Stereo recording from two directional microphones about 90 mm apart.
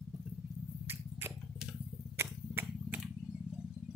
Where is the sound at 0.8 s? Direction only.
25° right (ahead or behind).